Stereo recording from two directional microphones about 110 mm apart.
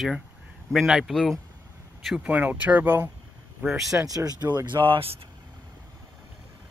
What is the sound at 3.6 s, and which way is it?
Speech, 5° right (ahead or behind).